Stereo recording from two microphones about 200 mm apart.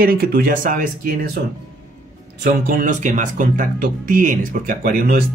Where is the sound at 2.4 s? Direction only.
45° right (ahead or behind).